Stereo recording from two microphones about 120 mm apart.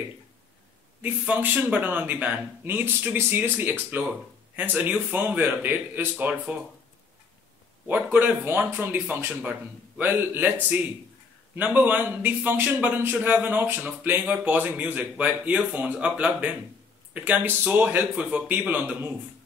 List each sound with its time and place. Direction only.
1.0 s speech: 15° right (ahead or behind)
7.8 s speech: 15° right (ahead or behind)